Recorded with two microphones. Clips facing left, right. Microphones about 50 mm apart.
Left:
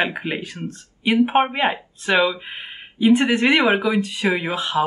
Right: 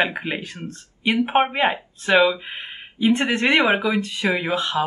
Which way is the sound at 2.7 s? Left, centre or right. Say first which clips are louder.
Left 4 dB; centre.